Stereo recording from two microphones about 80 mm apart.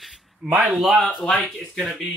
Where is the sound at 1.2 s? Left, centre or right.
Centre.